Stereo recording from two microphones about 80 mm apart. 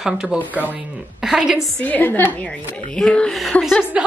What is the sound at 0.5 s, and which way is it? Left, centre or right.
Speech, right.